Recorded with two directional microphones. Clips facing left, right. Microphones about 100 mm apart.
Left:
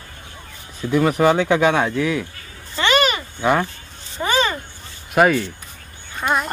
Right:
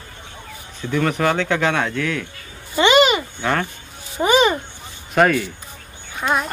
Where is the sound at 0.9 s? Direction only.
10° left (ahead or behind).